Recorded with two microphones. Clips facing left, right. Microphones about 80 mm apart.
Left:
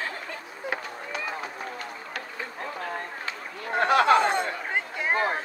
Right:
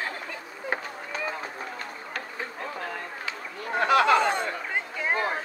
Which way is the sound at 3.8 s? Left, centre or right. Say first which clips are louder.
Left 1 dB; left.